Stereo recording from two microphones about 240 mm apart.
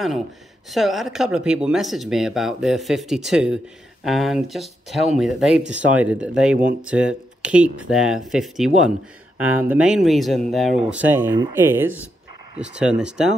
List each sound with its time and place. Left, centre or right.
0.7 s speech: centre
5.6 s speech: right
5.9 s speech: centre